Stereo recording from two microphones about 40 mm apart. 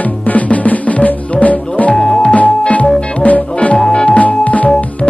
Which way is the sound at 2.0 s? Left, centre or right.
Centre.